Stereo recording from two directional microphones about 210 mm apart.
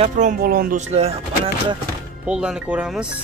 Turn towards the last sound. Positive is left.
turn(degrees=-5)  # may be behind; listen again after turning